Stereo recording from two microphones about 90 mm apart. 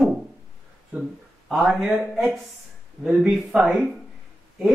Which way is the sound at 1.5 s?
5° right (ahead or behind).